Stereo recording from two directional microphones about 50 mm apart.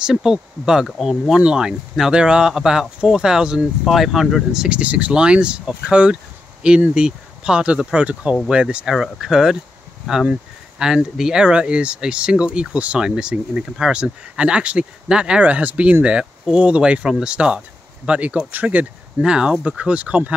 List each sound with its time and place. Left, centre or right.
0.0 s speech: centre
4.7 s speech: right
9.0 s speech: centre
15.4 s speech: right
19.2 s speech: centre